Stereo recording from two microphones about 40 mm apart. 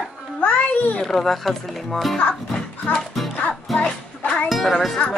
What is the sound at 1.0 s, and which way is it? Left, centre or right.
Speech, centre.